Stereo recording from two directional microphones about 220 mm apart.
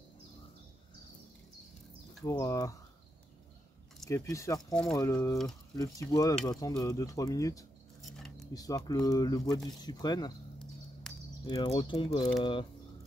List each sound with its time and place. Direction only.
2.2 s speech: 15° left (ahead or behind)
4.1 s speech: 15° left (ahead or behind)
11.1 s a sound: centre (ahead or behind)
11.4 s speech: 20° left (ahead or behind)